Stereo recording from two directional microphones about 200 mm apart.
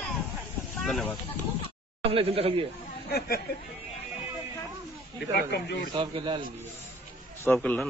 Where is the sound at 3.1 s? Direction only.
50° left (ahead or behind).